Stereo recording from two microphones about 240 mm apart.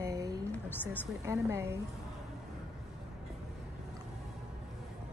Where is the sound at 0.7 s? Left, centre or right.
Centre.